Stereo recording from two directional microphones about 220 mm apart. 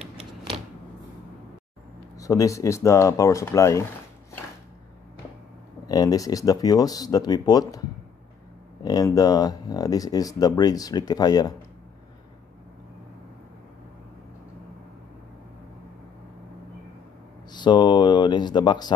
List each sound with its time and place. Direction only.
2.1 s speech: 15° left (ahead or behind)
5.9 s speech: 15° left (ahead or behind)
8.8 s speech: 15° left (ahead or behind)
17.5 s speech: 20° left (ahead or behind)